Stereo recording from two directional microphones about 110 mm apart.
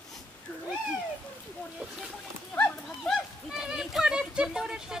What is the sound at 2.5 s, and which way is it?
Horse, 15° left (ahead or behind).